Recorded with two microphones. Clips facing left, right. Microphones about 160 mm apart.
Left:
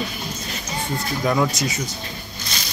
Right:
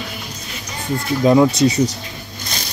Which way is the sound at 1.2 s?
25° right (ahead or behind).